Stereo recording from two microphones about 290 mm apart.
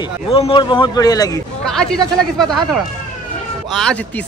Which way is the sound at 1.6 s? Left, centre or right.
Centre.